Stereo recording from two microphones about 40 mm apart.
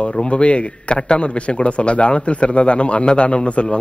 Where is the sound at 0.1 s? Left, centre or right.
Left.